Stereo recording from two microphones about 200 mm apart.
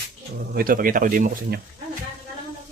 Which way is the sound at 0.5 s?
45° right (ahead or behind).